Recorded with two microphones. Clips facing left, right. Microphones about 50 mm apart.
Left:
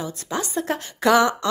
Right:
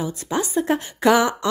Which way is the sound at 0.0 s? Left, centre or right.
Centre.